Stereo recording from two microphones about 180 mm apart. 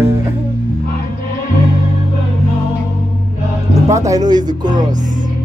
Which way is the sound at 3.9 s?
20° right (ahead or behind).